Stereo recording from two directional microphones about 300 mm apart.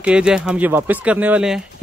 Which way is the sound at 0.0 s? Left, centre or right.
Centre.